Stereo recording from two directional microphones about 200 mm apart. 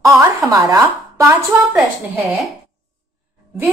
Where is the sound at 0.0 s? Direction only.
15° right (ahead or behind).